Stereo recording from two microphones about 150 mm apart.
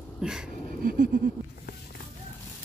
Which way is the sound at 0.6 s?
65° right (ahead or behind).